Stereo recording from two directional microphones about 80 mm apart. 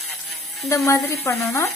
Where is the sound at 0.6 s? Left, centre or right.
Left.